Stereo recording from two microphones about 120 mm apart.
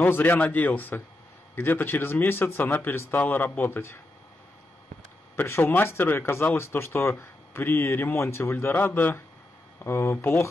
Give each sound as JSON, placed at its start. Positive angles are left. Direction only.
{"t": 0.0, "sound": "speech", "side_deg": 15}
{"t": 5.3, "sound": "speech", "side_deg": 20}